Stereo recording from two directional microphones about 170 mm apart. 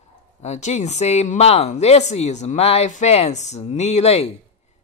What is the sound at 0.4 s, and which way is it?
Speech, 40° left (ahead or behind).